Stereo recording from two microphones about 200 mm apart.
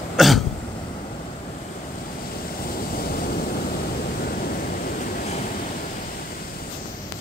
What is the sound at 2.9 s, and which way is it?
Waves, 45° left (ahead or behind).